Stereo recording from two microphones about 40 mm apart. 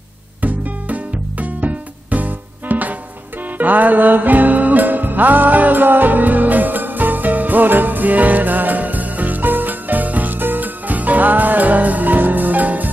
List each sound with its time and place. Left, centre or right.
0.4 s music: right